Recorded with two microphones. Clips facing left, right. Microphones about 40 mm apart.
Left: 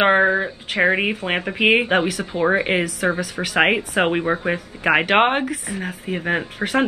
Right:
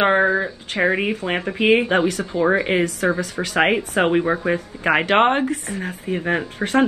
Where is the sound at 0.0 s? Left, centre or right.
Centre.